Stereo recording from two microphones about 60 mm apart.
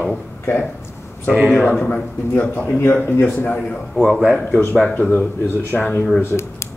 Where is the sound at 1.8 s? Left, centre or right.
Centre.